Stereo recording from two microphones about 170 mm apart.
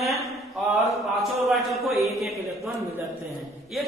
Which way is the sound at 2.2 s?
15° right (ahead or behind).